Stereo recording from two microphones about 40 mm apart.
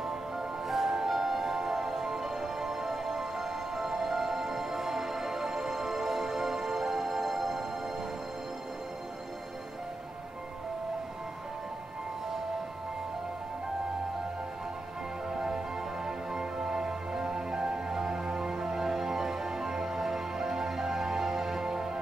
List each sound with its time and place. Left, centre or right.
0.0 s music: centre
15.2 s music: centre